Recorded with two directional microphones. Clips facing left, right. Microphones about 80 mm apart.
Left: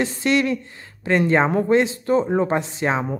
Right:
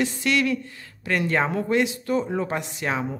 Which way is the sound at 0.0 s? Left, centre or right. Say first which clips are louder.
Left 3 dB; left.